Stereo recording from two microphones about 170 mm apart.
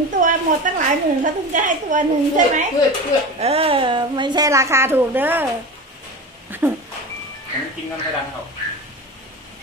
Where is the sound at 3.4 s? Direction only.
35° right (ahead or behind); by 5.4 s 10° right (ahead or behind).